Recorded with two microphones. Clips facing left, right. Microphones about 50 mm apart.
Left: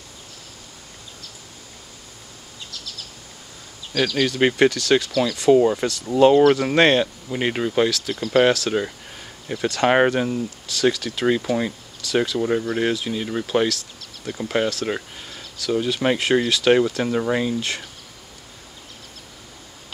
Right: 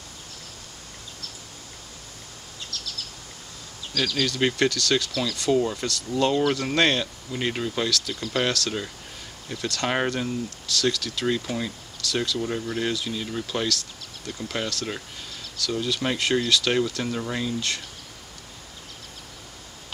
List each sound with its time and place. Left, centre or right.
3.9 s speech: left
5.5 s speech: left
17.6 s speech: centre